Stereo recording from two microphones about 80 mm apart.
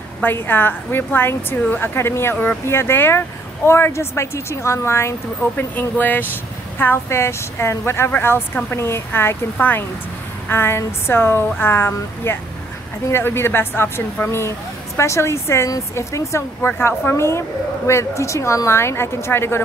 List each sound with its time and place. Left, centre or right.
0.2 s speech: left
5.6 s speech: left